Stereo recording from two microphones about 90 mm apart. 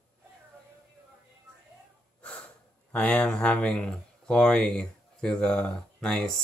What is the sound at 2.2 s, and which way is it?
Snort, 10° left (ahead or behind).